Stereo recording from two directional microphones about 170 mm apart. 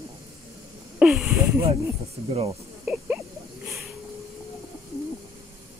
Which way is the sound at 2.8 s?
10° right (ahead or behind).